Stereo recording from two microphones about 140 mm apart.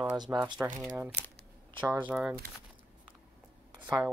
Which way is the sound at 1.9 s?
15° right (ahead or behind).